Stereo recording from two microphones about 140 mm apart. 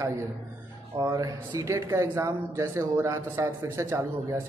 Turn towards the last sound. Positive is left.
turn(degrees=-20)  # may be behind; listen again after turning